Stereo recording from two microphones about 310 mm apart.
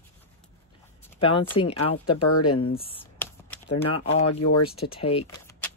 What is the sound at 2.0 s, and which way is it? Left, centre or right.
Speech, left.